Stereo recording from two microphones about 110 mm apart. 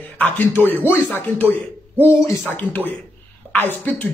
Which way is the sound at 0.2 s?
15° left (ahead or behind).